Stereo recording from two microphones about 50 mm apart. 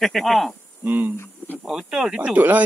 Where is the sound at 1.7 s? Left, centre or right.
Centre.